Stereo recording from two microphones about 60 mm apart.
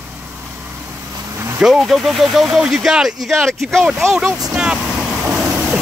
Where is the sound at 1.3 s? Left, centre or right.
Right.